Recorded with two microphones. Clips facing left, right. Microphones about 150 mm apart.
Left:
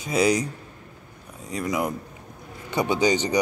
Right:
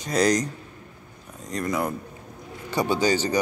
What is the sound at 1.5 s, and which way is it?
Speech, 10° left (ahead or behind).